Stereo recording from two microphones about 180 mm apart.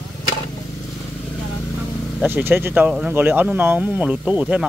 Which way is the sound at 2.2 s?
10° right (ahead or behind).